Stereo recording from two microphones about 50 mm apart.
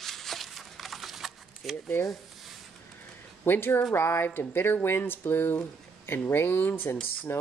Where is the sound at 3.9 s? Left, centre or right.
Left.